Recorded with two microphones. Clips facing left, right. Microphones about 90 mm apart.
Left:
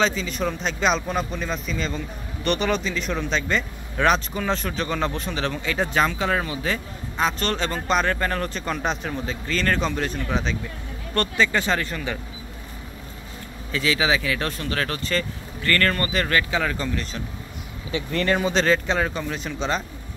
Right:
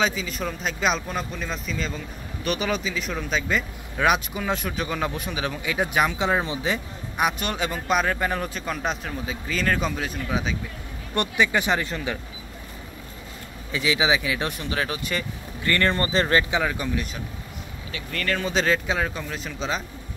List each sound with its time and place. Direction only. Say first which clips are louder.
0.0 s a man's voice: left 2 dB; 5° right (ahead or behind)
13.7 s speech: even; 15° right (ahead or behind)
17.9 s speech: left 5 dB; 25° left (ahead or behind)
18.4 s a man's voice: left 3 dB; 5° right (ahead or behind)